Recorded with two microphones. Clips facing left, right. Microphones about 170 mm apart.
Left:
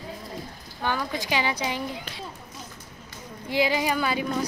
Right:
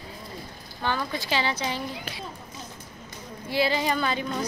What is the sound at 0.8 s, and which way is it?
Speech, 10° left (ahead or behind).